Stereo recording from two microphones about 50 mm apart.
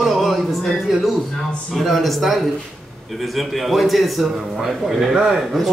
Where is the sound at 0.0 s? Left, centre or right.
Centre.